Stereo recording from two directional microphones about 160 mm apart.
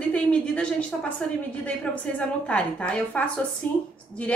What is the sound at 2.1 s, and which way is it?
A woman's voice, 10° left (ahead or behind).